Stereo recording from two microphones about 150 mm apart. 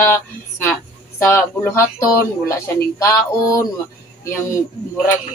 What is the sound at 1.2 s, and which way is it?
A woman's voice, 20° left (ahead or behind).